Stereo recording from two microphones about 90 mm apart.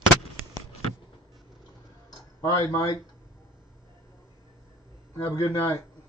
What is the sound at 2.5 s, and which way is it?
Speech, 45° left (ahead or behind).